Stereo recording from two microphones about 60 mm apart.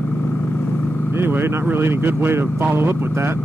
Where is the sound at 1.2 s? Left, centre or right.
Right.